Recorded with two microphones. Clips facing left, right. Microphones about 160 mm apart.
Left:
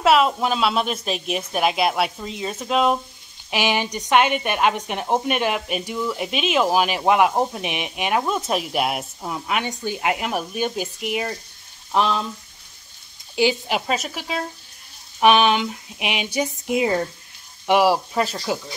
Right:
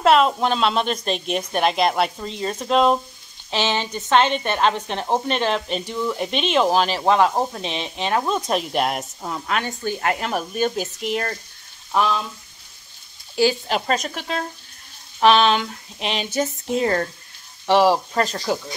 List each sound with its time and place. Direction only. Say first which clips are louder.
0.0 s a woman's voice: right 1 dB; 5° left (ahead or behind)
11.9 s frying: even; 20° left (ahead or behind)
13.4 s speech: right 1 dB; 15° left (ahead or behind)
13.7 s a woman's voice: right 2 dB; 5° left (ahead or behind)